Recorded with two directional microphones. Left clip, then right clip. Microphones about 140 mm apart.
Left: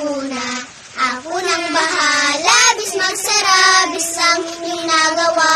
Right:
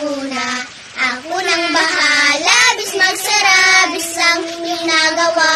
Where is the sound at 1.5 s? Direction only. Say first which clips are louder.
Right 2 dB; 35° left (ahead or behind).